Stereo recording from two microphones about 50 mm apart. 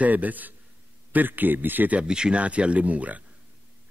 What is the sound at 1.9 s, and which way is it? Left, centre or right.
Speech, centre.